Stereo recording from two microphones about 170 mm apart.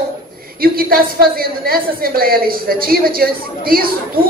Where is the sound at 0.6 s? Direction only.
60° right (ahead or behind).